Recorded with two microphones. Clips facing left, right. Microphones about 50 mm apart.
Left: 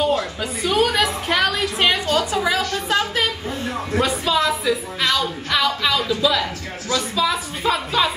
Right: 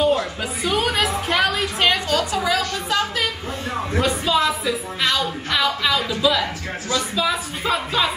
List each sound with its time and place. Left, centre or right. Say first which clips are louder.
0.0 s a sound: right 1 dB; centre
2.0 s a woman's voice: left 1 dB; left
4.0 s a woman's voice: even; centre